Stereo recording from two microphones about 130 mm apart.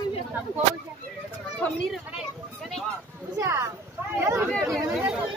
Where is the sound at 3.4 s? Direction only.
20° right (ahead or behind).